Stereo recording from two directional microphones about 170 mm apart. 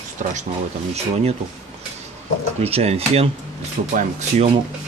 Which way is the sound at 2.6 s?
35° right (ahead or behind).